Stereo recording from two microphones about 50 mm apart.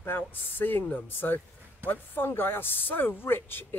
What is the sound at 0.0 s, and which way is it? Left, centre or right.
Speech, left.